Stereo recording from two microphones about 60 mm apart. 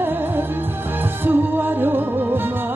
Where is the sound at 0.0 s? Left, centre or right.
Right.